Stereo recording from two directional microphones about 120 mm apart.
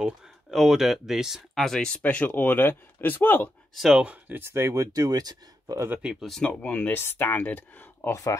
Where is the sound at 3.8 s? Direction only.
5° right (ahead or behind); by 6.0 s 25° right (ahead or behind).